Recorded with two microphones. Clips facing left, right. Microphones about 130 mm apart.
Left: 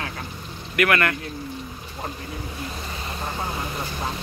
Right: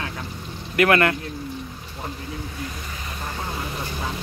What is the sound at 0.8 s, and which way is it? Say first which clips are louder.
Speech: right 3 dB; 25° right (ahead or behind).